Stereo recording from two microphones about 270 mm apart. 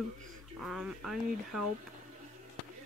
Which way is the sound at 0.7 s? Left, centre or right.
Centre.